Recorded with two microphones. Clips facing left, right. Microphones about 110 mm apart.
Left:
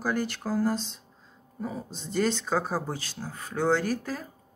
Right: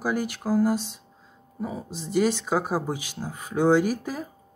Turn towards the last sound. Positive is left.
turn(degrees=-15)  # may be behind; listen again after turning